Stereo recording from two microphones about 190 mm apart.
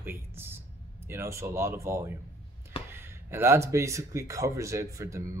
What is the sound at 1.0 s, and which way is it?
Speech, 15° right (ahead or behind).